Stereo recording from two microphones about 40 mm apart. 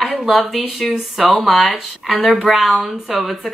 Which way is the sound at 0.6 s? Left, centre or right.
Centre.